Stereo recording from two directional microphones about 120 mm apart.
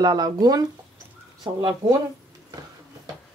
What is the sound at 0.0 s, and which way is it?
Speech, 35° right (ahead or behind).